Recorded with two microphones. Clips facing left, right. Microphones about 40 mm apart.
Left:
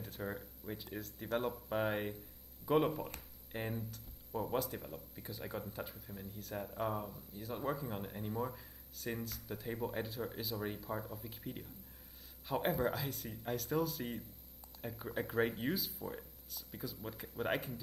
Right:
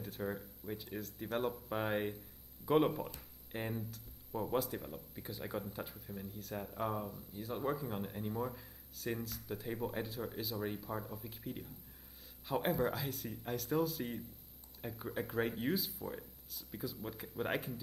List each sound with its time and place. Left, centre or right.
0.0 s speech: centre